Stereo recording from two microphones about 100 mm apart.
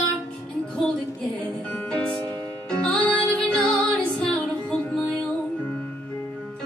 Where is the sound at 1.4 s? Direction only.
10° left (ahead or behind).